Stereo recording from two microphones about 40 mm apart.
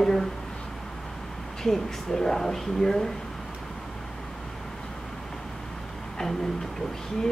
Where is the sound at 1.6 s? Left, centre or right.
Centre.